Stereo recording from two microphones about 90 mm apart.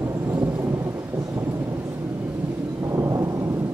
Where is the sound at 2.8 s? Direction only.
35° right (ahead or behind).